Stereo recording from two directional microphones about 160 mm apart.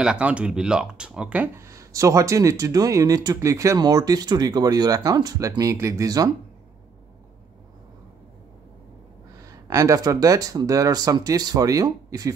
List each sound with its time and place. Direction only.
0.0 s speech: 5° right (ahead or behind); by 6.3 s 20° right (ahead or behind)
9.7 s speech: 20° right (ahead or behind)